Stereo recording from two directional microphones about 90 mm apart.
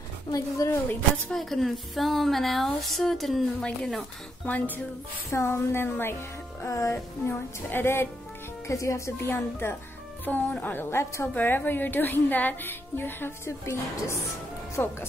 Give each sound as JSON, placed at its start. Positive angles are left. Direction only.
{"t": 0.3, "sound": "speech", "side_deg": 40}
{"t": 1.3, "sound": "speech", "side_deg": 0}
{"t": 4.5, "sound": "speech", "side_deg": 20}
{"t": 5.3, "sound": "a woman's voice", "side_deg": 30}
{"t": 14.8, "sound": "a woman's voice", "side_deg": 20}